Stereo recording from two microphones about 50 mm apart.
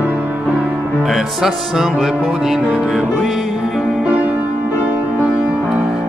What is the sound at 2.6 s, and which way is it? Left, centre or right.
Speech, centre.